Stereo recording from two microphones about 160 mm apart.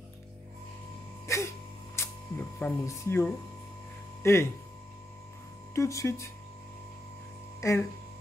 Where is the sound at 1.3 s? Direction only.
15° left (ahead or behind).